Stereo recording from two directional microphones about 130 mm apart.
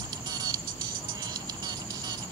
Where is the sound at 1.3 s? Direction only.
30° right (ahead or behind).